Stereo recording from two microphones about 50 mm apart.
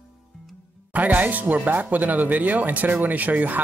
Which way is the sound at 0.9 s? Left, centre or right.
Right.